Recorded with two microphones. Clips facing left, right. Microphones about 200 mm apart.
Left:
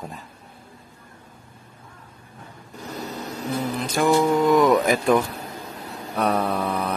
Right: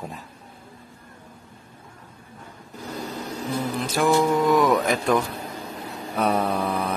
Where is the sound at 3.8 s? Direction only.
Centre (ahead or behind).